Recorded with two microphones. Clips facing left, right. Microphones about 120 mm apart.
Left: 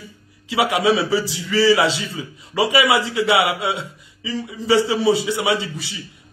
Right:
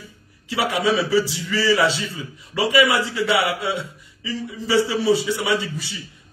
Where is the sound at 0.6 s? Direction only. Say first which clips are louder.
Left 3 dB; 90° left.